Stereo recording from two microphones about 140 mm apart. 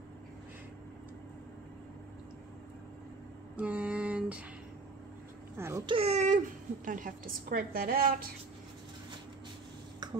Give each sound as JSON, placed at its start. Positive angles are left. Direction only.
{"t": 3.5, "sound": "a sound", "side_deg": -10}
{"t": 5.6, "sound": "speech", "side_deg": -20}
{"t": 5.9, "sound": "a child's voice", "side_deg": -45}